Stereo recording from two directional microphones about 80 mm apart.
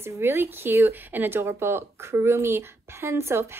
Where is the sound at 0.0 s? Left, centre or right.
Right.